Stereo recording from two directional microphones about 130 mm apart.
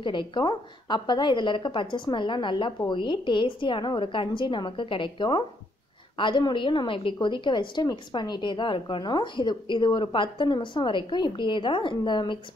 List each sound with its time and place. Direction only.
0.0 s a woman's voice: 40° left (ahead or behind)